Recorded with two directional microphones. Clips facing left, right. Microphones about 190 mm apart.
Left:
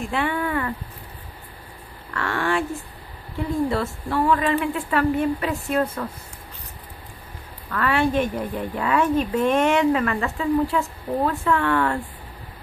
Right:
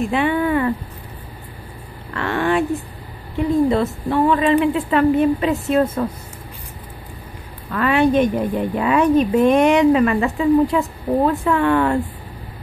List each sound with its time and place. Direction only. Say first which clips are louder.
0.0 s a sound: right 6 dB; 20° right (ahead or behind)
2.1 s a woman's voice: right 5 dB; 20° right (ahead or behind)
7.7 s a woman's voice: right 5 dB; 20° right (ahead or behind)